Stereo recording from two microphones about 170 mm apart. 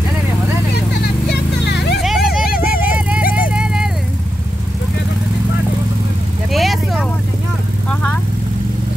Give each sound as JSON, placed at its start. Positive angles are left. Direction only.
{"t": 1.7, "sound": "vehicle", "side_deg": 80}
{"t": 2.0, "sound": "vehicle", "side_deg": 0}
{"t": 6.5, "sound": "vehicle", "side_deg": 0}